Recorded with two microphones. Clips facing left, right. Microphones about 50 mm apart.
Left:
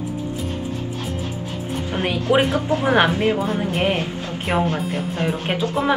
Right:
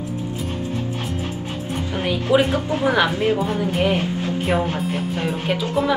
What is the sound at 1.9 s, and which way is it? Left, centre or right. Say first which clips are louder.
A woman's voice: right 1 dB; left.